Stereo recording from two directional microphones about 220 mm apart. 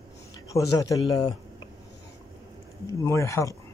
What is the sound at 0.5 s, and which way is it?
Speech, 15° left (ahead or behind).